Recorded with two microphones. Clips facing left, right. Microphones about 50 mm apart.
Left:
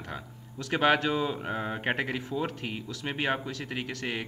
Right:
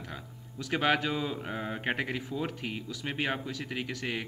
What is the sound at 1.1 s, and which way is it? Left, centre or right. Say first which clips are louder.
Speech: left 4 dB; centre.